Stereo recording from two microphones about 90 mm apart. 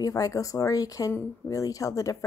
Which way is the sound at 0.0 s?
40° left (ahead or behind).